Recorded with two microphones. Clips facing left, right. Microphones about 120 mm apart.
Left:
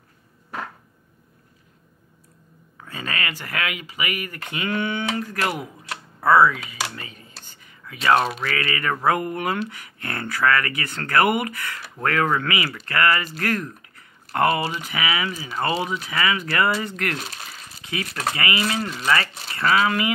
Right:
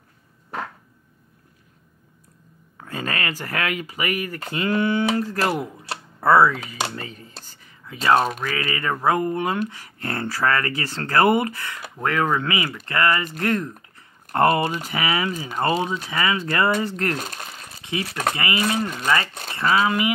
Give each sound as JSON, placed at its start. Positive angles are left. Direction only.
{"t": 2.8, "sound": "speech", "side_deg": -45}
{"t": 7.4, "sound": "whispering", "side_deg": -35}
{"t": 8.5, "sound": "speech", "side_deg": -15}
{"t": 14.3, "sound": "speech", "side_deg": -40}
{"t": 17.2, "sound": "speech", "side_deg": -45}
{"t": 17.8, "sound": "speech", "side_deg": -25}